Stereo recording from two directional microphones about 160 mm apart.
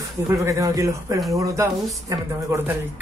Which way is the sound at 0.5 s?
20° right (ahead or behind).